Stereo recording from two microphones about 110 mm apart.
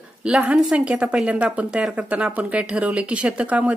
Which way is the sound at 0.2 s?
10° right (ahead or behind).